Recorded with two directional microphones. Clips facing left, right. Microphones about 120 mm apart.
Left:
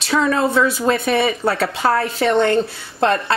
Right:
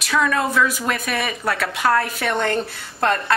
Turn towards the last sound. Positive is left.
turn(degrees=25)  # may be behind; listen again after turning